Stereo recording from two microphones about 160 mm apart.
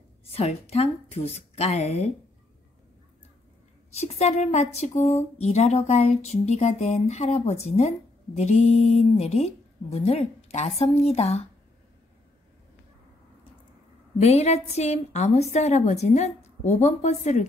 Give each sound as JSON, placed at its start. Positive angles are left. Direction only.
{"t": 0.3, "sound": "a woman's voice", "side_deg": 40}
{"t": 3.9, "sound": "a woman's voice", "side_deg": 40}
{"t": 14.2, "sound": "speech", "side_deg": 40}